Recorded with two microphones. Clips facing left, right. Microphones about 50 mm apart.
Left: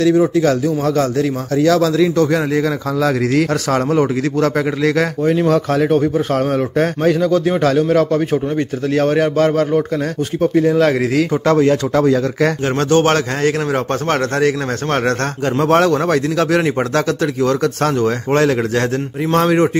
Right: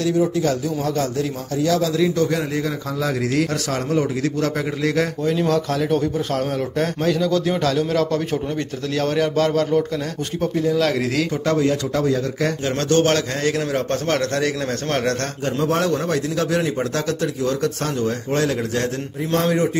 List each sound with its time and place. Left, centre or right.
0.1 s a man's voice: left
1.6 s a man's voice: left
3.7 s a man's voice: left
5.2 s a man's voice: left
7.2 s a man's voice: left
8.9 s a man's voice: left
10.5 s a man's voice: left
10.8 s a man's voice: left
11.4 s a man's voice: left
12.6 s speech: left
15.6 s a man's voice: left